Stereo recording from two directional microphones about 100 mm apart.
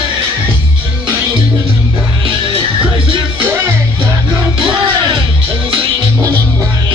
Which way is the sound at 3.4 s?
25° right (ahead or behind).